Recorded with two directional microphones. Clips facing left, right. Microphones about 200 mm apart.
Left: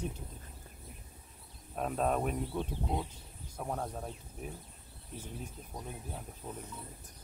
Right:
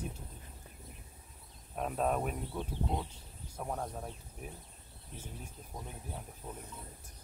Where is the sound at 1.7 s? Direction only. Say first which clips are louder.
Left 1 dB; centre (ahead or behind).